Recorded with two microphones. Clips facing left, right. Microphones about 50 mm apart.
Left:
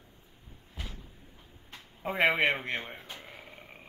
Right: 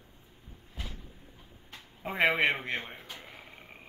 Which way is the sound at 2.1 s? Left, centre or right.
Centre.